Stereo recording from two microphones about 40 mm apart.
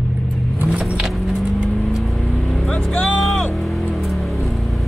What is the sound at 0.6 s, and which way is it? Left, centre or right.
Vehicle, right.